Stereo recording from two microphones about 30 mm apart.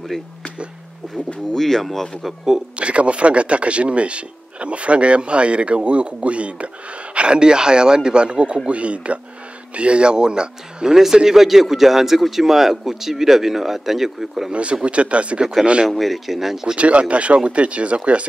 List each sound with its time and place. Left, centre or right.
1.1 s speech: centre
2.8 s speech: right
7.2 s speech: right
11.2 s a man's voice: centre
14.5 s speech: right
15.9 s a man's voice: centre
16.7 s speech: right